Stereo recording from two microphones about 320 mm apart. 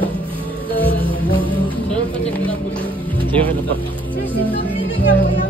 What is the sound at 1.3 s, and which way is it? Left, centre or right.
Music, centre.